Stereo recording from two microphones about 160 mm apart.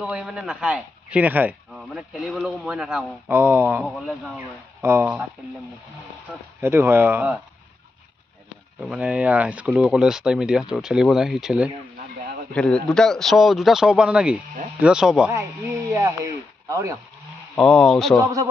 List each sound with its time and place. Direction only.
0.0 s speech: 5° right (ahead or behind)
1.7 s speech: centre (ahead or behind)
3.3 s speech: 15° right (ahead or behind)
3.8 s speech: centre (ahead or behind)
4.8 s speech: 15° right (ahead or behind)
6.6 s speech: 15° right (ahead or behind)
8.8 s speech: 5° right (ahead or behind)
12.5 s speech: 5° left (ahead or behind)
15.3 s speech: 20° right (ahead or behind)
17.6 s speech: 5° left (ahead or behind)
18.2 s a man's voice: 20° right (ahead or behind)